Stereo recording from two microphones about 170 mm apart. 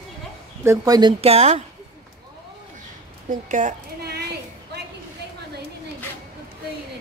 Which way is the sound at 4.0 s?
70° right (ahead or behind).